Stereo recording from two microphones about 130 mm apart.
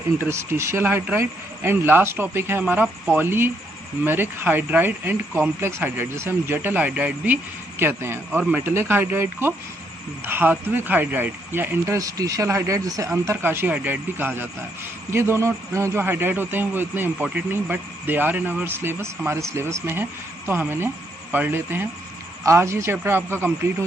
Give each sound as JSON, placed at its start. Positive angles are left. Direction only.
{"t": 0.2, "sound": "a man's voice", "side_deg": -20}